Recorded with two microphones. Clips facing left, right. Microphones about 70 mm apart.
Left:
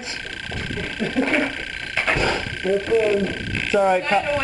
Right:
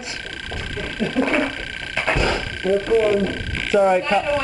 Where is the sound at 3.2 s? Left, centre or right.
Centre.